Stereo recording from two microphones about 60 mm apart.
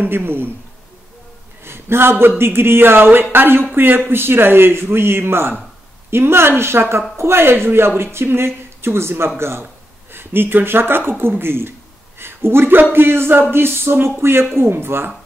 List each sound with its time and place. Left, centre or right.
0.0 s speech: right
1.6 s speech: right